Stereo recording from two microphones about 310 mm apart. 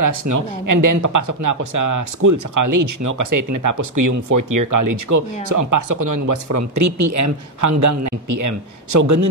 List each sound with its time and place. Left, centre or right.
0.0 s speech: right